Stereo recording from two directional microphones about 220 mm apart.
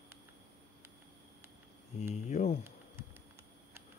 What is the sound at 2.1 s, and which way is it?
Speech, 30° left (ahead or behind).